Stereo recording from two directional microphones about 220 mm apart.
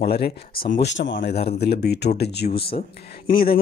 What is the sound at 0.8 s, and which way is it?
Speech, 55° left (ahead or behind).